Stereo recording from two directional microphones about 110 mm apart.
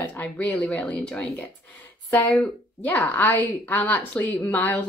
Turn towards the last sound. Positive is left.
turn(degrees=25)  # may be behind; listen again after turning